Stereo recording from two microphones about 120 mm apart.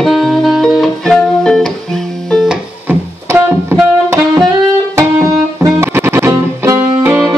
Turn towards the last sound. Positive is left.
turn(degrees=-20)  # may be behind; listen again after turning